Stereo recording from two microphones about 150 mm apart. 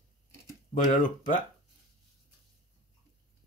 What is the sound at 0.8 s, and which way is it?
Speech, 60° left (ahead or behind).